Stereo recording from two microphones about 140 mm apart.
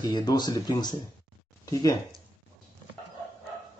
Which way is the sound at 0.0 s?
30° left (ahead or behind).